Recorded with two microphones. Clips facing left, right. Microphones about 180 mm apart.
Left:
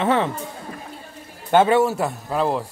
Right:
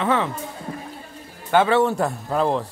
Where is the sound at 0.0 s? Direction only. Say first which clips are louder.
Left 2 dB; 25° left (ahead or behind).